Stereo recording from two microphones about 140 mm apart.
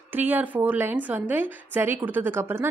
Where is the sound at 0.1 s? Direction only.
15° right (ahead or behind).